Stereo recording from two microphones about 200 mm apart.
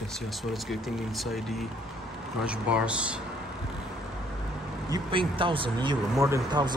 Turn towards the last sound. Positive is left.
turn(degrees=-20)  # may be behind; listen again after turning